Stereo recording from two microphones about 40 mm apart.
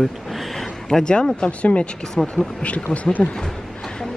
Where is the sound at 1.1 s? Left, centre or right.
Left.